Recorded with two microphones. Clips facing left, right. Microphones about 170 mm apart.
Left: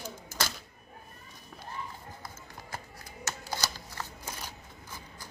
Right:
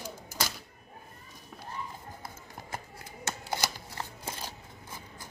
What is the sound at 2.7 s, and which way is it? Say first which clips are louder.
Shuffling cards: right 2 dB; 20° right (ahead or behind).